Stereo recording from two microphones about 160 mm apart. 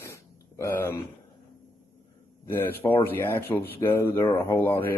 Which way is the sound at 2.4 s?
15° left (ahead or behind).